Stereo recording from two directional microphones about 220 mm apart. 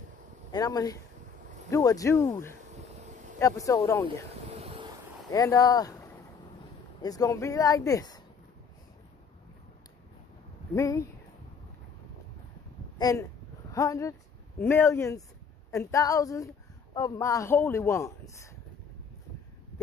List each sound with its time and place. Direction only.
0.5 s speech: 15° left (ahead or behind)
3.3 s speech: 15° left (ahead or behind)
4.5 s vehicle: 30° right (ahead or behind)
5.3 s speech: 15° left (ahead or behind)
10.7 s speech: 15° left (ahead or behind)
13.0 s speech: 15° left (ahead or behind)